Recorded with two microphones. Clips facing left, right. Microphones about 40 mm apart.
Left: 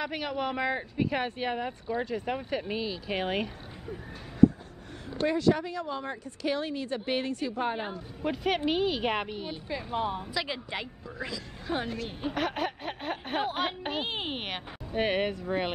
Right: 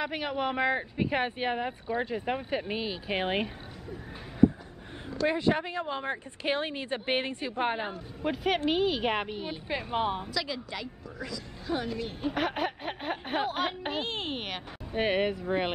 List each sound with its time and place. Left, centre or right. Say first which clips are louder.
0.0 s speech: right 1 dB; centre
5.3 s a woman's voice: left 3 dB; right
7.7 s speech: right 1 dB; centre
9.7 s a woman's voice: right 2 dB; right
10.3 s a woman's voice: left 1 dB; left
12.4 s speech: even; centre
14.9 s speech: right 1 dB; centre